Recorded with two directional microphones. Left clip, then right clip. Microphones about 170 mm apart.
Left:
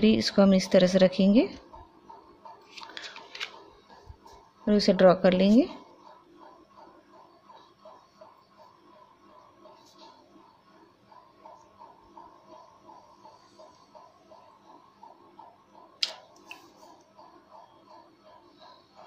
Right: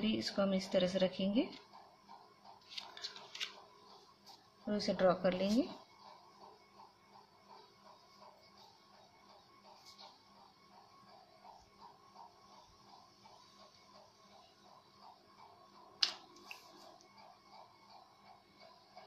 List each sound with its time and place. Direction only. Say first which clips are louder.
0.0 s speech: left 14 dB; 60° left (ahead or behind)
4.6 s speech: left 13 dB; 55° left (ahead or behind)